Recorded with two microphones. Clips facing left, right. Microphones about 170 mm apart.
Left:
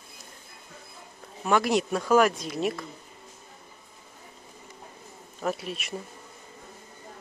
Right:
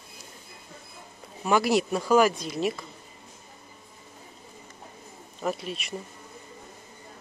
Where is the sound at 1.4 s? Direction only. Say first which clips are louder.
Right 1 dB; 5° right (ahead or behind).